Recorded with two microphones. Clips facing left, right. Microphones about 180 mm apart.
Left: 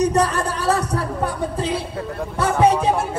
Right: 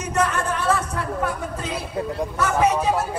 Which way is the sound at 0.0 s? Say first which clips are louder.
Left 5 dB; 35° left (ahead or behind).